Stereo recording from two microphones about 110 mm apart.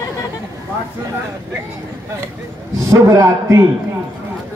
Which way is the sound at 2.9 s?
30° right (ahead or behind).